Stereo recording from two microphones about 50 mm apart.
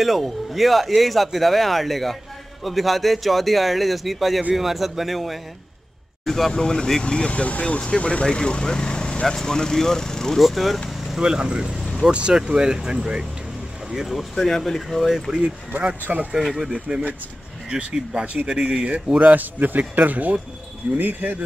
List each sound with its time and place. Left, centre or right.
0.0 s speech: centre
10.4 s speech: centre
10.9 s vehicle: centre
11.1 s speech: centre
13.9 s speech: centre
15.3 s speech: centre
15.7 s a man's voice: right
16.0 s speech: right
16.4 s a man's voice: centre; by 18.5 s right
18.5 s a man's voice: centre; by 21.4 s right